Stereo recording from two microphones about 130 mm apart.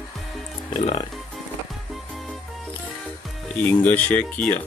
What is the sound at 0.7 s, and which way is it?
Speech, 60° left (ahead or behind).